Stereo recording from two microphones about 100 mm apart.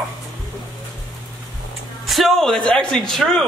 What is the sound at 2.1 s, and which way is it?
A man's voice, centre (ahead or behind).